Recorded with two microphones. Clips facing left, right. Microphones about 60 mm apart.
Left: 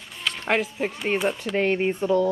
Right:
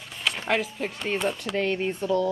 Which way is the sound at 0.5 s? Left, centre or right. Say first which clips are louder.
Left 4 dB; centre.